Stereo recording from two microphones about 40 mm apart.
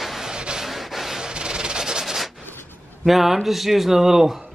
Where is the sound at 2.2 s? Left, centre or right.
Centre.